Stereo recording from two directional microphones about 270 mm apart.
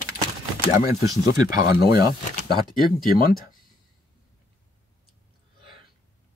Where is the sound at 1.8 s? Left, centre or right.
Left.